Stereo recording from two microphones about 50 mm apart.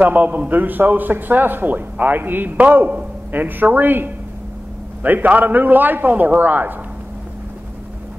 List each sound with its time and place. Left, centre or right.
0.0 s a man's voice: right